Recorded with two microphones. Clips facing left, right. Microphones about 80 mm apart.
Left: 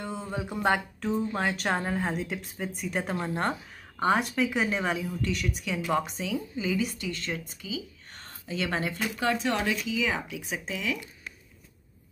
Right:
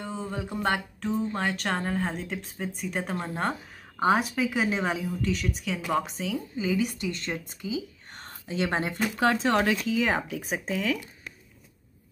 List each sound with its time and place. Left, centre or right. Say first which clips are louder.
0.0 s a sound: right 1 dB; centre
0.3 s speech: left 2 dB; centre
4.0 s speech: right 1 dB; centre
5.1 s speech: right 2 dB; centre
7.0 s a woman's voice: right 2 dB; right
8.2 s speech: right 3 dB; right
9.4 s speech: right 4 dB; right